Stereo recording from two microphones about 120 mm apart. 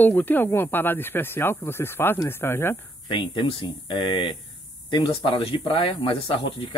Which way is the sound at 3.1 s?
45° left (ahead or behind).